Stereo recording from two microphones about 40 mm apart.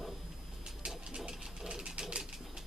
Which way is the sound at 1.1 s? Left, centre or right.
Centre.